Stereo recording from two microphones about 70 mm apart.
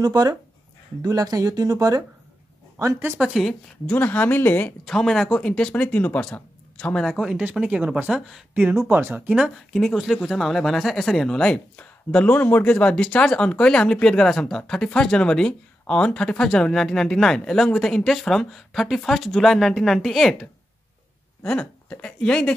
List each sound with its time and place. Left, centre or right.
0.0 s speech: right
3.2 s speech: centre
3.8 s speech: left
4.8 s speech: centre
7.2 s speech: centre
8.8 s speech: right
9.3 s speech: centre
11.2 s speech: centre
21.5 s speech: centre